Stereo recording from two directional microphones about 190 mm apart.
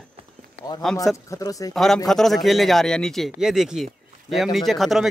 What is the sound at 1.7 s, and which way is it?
Speech, centre (ahead or behind).